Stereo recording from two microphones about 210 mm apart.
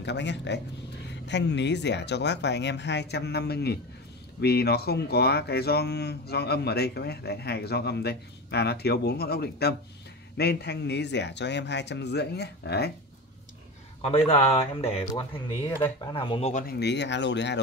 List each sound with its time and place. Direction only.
0.0 s speech: 55° left (ahead or behind)
14.0 s speech: 25° left (ahead or behind)
16.1 s speech: 25° left (ahead or behind)
16.6 s speech: 55° left (ahead or behind)